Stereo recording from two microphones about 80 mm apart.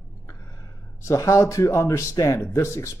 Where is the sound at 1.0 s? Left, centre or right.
Left.